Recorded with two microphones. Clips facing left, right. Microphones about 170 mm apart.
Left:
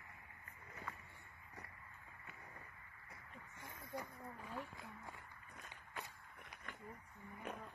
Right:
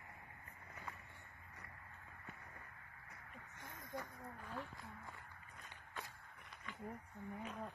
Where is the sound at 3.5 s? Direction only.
10° left (ahead or behind).